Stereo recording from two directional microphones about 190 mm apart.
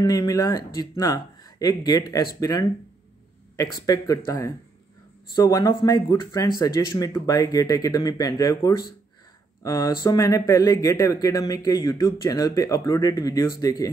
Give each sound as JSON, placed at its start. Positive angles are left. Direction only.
{"t": 0.0, "sound": "speech", "side_deg": 20}
{"t": 3.7, "sound": "speech", "side_deg": 20}